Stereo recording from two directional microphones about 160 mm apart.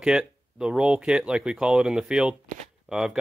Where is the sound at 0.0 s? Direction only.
5° right (ahead or behind).